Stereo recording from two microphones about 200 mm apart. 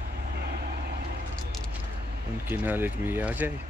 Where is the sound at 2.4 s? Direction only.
10° right (ahead or behind).